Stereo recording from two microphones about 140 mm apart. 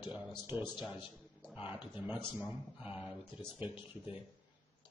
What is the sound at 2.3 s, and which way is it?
Speech, 10° right (ahead or behind).